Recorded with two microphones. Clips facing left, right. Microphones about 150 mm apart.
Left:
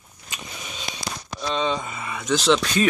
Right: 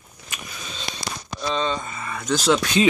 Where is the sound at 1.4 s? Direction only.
Centre (ahead or behind).